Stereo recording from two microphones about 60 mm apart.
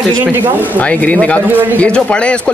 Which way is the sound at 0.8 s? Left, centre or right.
Left.